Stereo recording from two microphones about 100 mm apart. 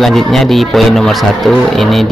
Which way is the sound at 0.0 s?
5° left (ahead or behind).